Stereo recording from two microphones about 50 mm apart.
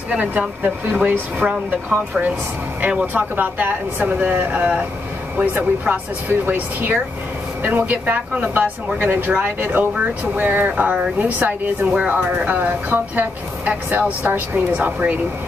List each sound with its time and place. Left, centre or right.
1.4 s speech: centre
3.1 s speech: right